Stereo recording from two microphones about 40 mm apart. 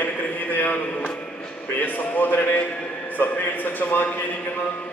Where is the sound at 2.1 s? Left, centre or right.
Left.